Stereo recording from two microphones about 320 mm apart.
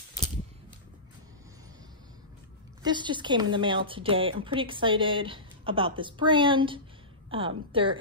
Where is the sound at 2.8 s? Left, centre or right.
Centre.